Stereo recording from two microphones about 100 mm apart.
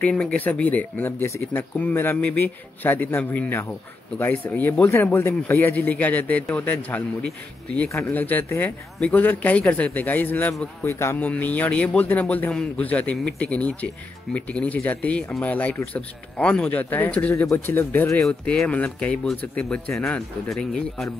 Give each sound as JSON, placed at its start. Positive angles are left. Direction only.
{"t": 0.0, "sound": "speech", "side_deg": 10}
{"t": 17.3, "sound": "speech", "side_deg": 25}
{"t": 18.2, "sound": "speech", "side_deg": 5}